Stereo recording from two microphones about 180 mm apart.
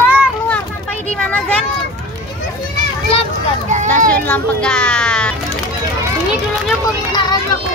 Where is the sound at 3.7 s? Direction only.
45° right (ahead or behind).